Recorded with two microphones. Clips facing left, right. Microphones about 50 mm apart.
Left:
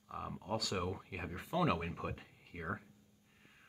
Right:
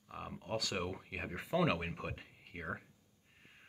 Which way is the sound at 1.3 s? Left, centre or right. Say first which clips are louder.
Right 1 dB; right.